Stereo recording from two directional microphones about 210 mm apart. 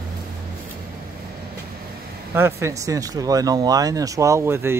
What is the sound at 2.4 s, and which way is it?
Speech, 10° right (ahead or behind).